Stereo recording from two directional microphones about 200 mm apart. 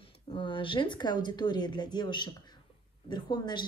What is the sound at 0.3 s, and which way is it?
A woman's voice, 25° left (ahead or behind).